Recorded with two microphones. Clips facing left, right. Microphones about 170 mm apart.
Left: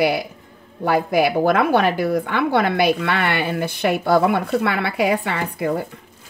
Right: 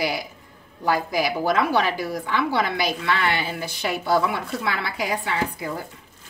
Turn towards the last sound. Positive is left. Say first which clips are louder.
# left 4 dB
turn(degrees=60)  # may be behind; listen again after turning